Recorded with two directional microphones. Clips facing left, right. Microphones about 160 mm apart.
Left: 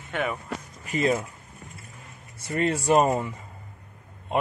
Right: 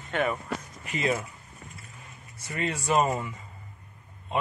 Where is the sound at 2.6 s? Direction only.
40° left (ahead or behind).